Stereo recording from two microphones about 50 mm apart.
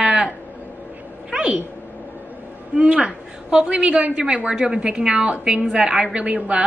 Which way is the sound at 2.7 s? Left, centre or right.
Right.